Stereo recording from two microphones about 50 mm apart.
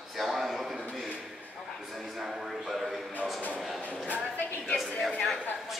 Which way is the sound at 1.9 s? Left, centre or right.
Centre.